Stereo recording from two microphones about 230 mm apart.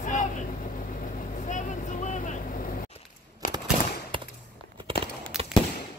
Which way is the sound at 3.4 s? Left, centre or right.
Left.